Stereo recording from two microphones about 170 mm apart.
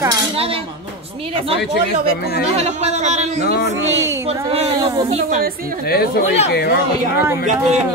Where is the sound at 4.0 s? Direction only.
15° right (ahead or behind).